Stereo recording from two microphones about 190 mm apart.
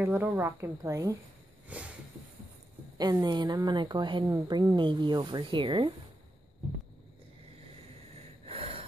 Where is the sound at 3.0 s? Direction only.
20° right (ahead or behind).